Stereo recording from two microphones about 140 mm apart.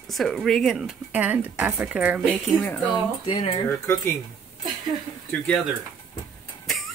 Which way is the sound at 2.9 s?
40° left (ahead or behind).